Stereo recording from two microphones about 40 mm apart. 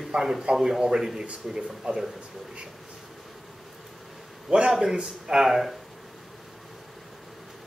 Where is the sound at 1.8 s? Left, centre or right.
Right.